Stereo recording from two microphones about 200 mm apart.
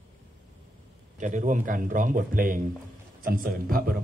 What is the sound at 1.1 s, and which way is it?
A man's voice, 40° right (ahead or behind).